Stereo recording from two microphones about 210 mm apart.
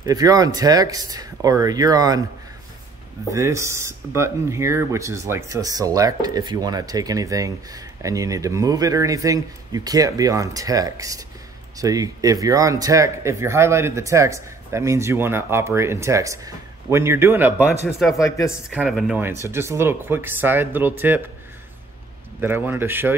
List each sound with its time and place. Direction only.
0.0 s speech: 15° right (ahead or behind)
3.3 s speech: 15° right (ahead or behind)
18.1 s speech: 15° left (ahead or behind)
18.7 s speech: 5° right (ahead or behind)
22.4 s speech: 10° right (ahead or behind)